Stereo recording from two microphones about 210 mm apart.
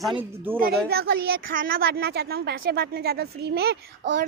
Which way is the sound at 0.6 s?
45° right (ahead or behind).